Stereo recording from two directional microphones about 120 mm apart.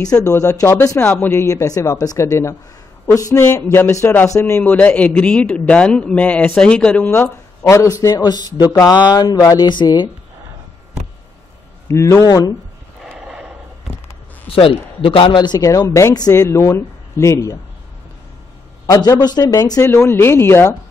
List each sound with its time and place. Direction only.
0.0 s speech: 30° left (ahead or behind)
0.9 s speech: 15° left (ahead or behind)
9.7 s speech: 40° left (ahead or behind)
11.9 s speech: 25° left (ahead or behind)
13.0 s a sound: 5° right (ahead or behind)
14.5 s speech: 50° left (ahead or behind); by 17.6 s 25° left (ahead or behind)
18.9 s speech: 30° left (ahead or behind)